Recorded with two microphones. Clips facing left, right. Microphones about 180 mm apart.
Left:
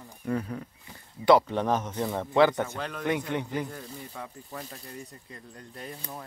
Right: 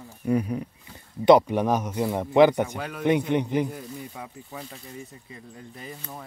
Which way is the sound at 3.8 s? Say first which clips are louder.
Right 3 dB; 5° right (ahead or behind).